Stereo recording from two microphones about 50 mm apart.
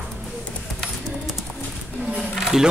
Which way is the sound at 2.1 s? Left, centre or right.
Centre.